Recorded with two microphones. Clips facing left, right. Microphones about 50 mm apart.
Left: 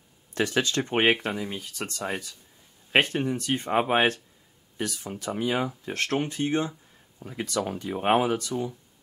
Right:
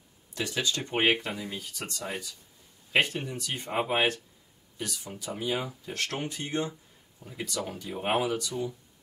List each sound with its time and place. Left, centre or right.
0.3 s speech: left